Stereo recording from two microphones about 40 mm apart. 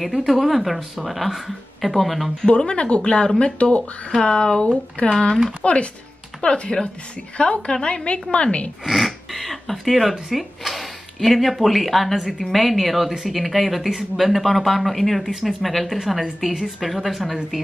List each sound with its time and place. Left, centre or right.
0.3 s speech: centre
2.4 s a woman's voice: left
8.8 s a sound: centre
10.3 s speech: centre